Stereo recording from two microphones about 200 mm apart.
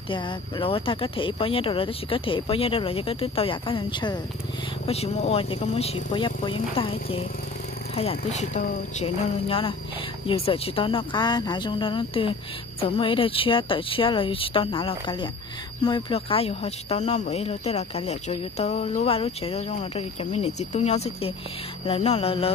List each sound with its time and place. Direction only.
0.1 s speech: 25° left (ahead or behind)